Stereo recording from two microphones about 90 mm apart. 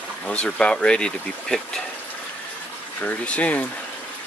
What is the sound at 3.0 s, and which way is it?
Speech, 15° left (ahead or behind).